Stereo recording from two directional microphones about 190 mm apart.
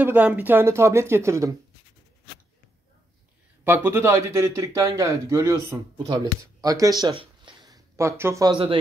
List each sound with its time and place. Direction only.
0.0 s a man's voice: 10° right (ahead or behind)
3.6 s a man's voice: 10° right (ahead or behind)